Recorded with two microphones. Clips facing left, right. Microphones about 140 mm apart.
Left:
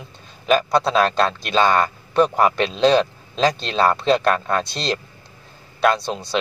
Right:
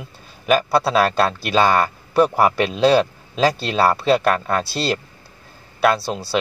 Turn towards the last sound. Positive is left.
turn(degrees=-5)  # may be behind; listen again after turning